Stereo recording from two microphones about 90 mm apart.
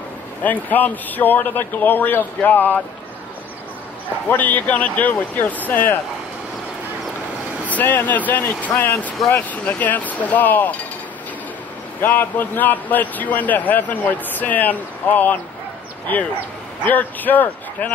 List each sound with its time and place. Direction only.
0.4 s a man's voice: 20° left (ahead or behind)
4.3 s a man's voice: 20° left (ahead or behind)
7.6 s a man's voice: 20° left (ahead or behind)
12.0 s a man's voice: 20° left (ahead or behind)
16.8 s a man's voice: 20° left (ahead or behind)